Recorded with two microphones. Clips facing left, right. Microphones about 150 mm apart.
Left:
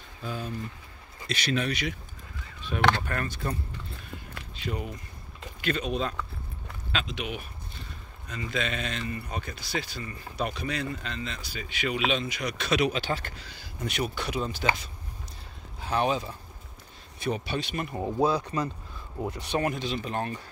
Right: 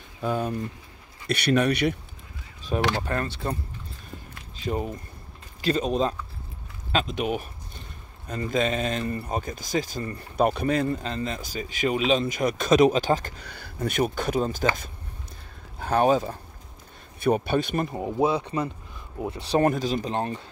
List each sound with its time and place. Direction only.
0.2 s speech: 55° right (ahead or behind)
3.0 s speech: 30° right (ahead or behind)
5.6 s speech: 35° right (ahead or behind)
13.5 s speech: 55° right (ahead or behind)
17.9 s speech: 15° right (ahead or behind)
18.3 s speech: 25° right (ahead or behind)
19.5 s speech: 40° right (ahead or behind)
20.1 s speech: 25° right (ahead or behind)